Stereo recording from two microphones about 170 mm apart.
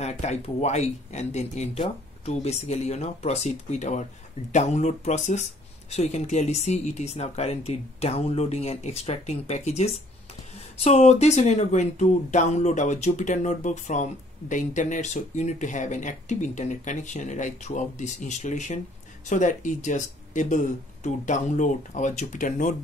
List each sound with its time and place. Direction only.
0.0 s speech: 40° left (ahead or behind)